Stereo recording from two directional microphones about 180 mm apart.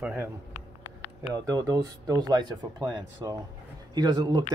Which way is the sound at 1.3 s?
20° right (ahead or behind).